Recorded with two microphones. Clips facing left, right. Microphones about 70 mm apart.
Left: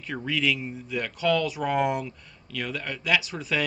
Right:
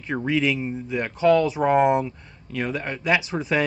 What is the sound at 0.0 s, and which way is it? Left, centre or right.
A man's voice, right.